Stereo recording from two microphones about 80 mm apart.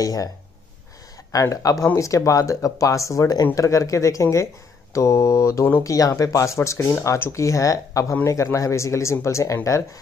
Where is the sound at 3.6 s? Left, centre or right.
Left.